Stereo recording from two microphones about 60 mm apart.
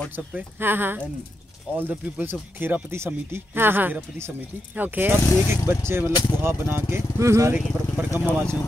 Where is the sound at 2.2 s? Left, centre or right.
Right.